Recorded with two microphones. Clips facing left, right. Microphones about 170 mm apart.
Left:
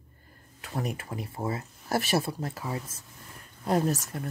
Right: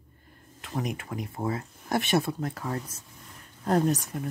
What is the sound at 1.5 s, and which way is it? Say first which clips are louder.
Speech: right 1 dB; 5° left (ahead or behind).